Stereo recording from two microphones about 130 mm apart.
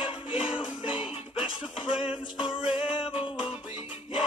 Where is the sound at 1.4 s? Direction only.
40° left (ahead or behind).